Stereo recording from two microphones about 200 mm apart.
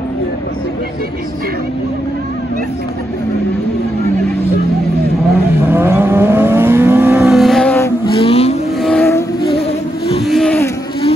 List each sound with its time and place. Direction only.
5.7 s vehicle: 10° right (ahead or behind)
7.7 s vehicle: 15° left (ahead or behind)
8.2 s vehicle: 30° left (ahead or behind)
8.8 s vehicle: 10° left (ahead or behind)
9.4 s a sound: 55° left (ahead or behind)
10.2 s a sound: centre (ahead or behind)